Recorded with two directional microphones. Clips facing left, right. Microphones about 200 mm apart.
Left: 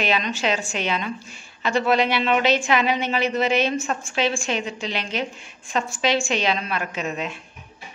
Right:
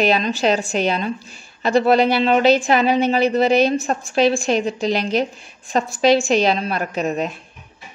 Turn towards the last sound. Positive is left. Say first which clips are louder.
# right 6 dB
turn(degrees=-40)  # may be behind; listen again after turning